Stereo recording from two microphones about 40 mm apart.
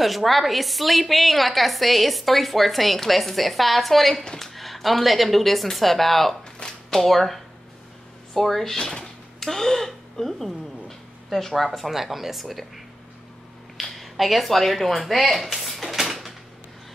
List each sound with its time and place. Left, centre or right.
0.0 s a woman's voice: centre